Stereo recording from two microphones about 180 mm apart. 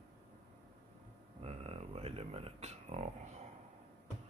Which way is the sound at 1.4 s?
35° right (ahead or behind).